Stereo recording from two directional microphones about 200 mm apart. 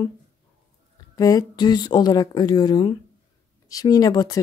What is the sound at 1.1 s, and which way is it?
Speech, 20° left (ahead or behind).